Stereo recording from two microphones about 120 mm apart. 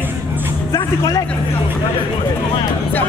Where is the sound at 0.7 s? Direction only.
30° left (ahead or behind).